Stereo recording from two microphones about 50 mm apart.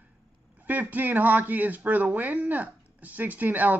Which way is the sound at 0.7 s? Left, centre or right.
Right.